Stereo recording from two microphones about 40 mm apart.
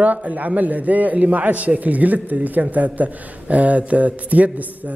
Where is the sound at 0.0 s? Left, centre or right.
Right.